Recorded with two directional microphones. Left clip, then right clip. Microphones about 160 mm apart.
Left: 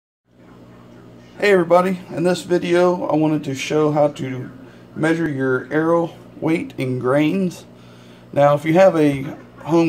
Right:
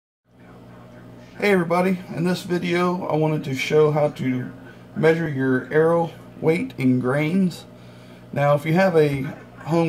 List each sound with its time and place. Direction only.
1.4 s speech: 30° left (ahead or behind)